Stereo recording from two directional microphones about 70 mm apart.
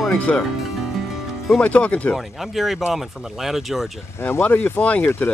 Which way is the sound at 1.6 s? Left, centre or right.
Left.